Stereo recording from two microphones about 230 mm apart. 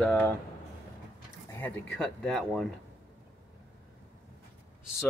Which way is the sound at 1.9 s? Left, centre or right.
Centre.